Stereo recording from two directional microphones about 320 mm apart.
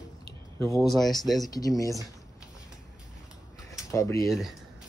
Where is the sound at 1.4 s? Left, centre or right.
Centre.